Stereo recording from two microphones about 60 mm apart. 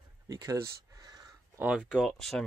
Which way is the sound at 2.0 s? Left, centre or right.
Centre.